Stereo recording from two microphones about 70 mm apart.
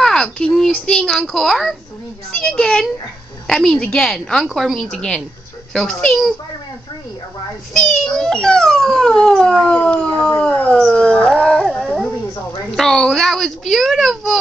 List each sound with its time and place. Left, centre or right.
0.0 s a child's voice: centre
7.7 s dog: centre
9.7 s howl: centre
12.7 s a child's voice: centre